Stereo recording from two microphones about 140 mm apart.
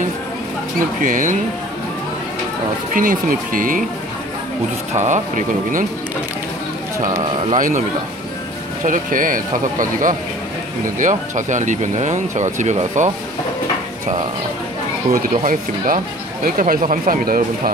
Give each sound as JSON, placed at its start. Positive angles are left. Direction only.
{"t": 1.0, "sound": "speech", "side_deg": -70}
{"t": 2.9, "sound": "speech", "side_deg": -80}
{"t": 4.9, "sound": "speech", "side_deg": -60}
{"t": 7.5, "sound": "speech", "side_deg": -70}
{"t": 8.8, "sound": "speech", "side_deg": -70}
{"t": 15.2, "sound": "speech", "side_deg": -80}